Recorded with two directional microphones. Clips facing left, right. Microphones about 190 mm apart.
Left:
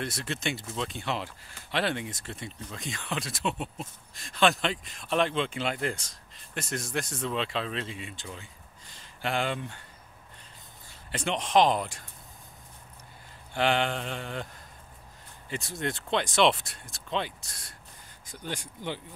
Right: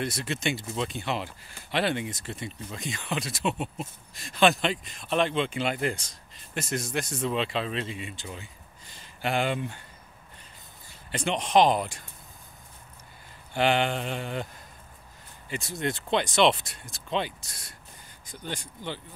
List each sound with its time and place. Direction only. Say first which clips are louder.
0.0 s speech: right 3 dB; 5° right (ahead or behind)
11.1 s speech: right 2 dB; centre (ahead or behind)
13.6 s speech: right 2 dB; 5° right (ahead or behind)
15.5 s speech: right 2 dB; centre (ahead or behind)
18.2 s speech: even; 10° left (ahead or behind)